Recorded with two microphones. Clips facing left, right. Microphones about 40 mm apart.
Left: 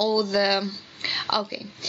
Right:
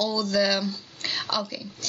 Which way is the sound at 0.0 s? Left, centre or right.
Centre.